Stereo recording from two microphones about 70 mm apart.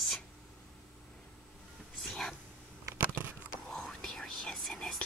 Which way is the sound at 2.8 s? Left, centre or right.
Right.